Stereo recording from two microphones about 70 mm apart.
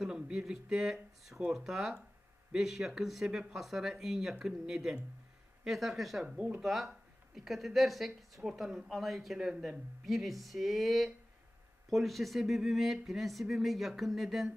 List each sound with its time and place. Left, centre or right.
0.0 s speech: centre
6.2 s speech: centre
6.6 s speech: centre